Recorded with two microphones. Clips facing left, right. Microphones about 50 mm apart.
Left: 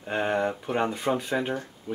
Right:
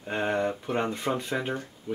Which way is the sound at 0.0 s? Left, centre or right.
Centre.